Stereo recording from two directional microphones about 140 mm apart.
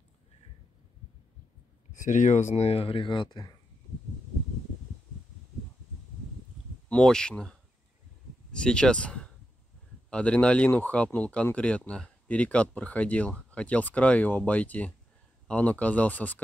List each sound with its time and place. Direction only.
1.9 s speech: 65° left (ahead or behind)
2.5 s speech: 45° left (ahead or behind); by 3.5 s 30° left (ahead or behind)
6.9 s speech: 5° left (ahead or behind)